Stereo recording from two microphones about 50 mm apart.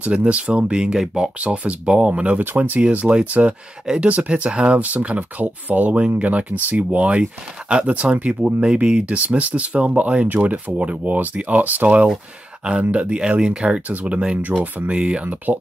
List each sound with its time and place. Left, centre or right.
0.0 s speech: right
2.4 s speech: right
12.6 s speech: right
13.8 s speech: right